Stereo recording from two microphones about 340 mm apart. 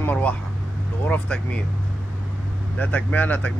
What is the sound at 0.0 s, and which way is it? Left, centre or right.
Speech, centre.